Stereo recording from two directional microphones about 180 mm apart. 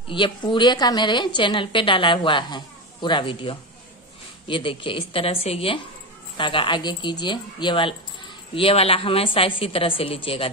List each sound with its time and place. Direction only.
0.1 s a woman's voice: 25° left (ahead or behind)